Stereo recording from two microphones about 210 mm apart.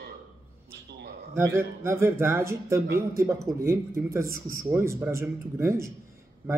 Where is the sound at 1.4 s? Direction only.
15° right (ahead or behind).